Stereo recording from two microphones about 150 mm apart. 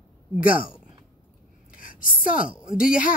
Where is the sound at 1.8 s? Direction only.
65° left (ahead or behind).